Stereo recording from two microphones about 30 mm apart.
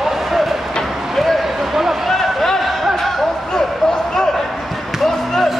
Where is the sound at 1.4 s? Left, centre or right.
Centre.